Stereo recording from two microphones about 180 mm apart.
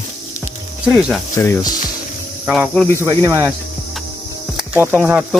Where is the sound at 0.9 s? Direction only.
5° right (ahead or behind).